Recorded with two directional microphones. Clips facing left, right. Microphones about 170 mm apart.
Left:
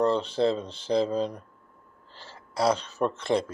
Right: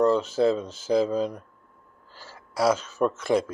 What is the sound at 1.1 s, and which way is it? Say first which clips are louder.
Speech: right 2 dB; 5° right (ahead or behind).